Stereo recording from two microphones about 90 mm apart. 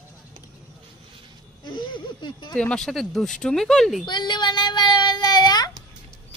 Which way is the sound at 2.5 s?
10° left (ahead or behind).